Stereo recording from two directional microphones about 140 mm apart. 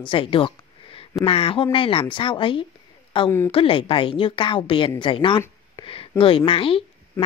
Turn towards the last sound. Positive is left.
turn(degrees=40)  # may be behind; listen again after turning